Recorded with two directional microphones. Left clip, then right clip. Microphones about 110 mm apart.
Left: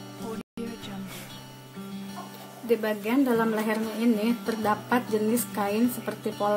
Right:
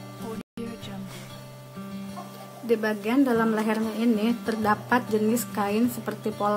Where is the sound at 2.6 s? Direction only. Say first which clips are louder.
Right 1 dB; 15° right (ahead or behind).